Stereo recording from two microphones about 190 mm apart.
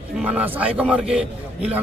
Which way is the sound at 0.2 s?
5° right (ahead or behind).